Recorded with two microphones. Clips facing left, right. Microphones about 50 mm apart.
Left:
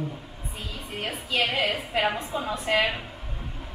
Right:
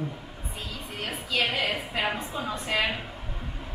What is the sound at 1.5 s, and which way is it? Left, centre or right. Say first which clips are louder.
A woman's voice: left 3 dB; centre.